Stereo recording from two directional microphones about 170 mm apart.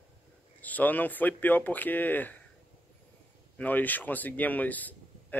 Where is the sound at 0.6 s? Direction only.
10° left (ahead or behind).